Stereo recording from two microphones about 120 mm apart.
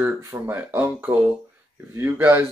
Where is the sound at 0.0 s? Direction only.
20° right (ahead or behind).